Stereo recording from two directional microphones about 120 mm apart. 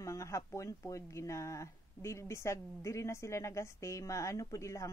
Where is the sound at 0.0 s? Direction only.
25° left (ahead or behind).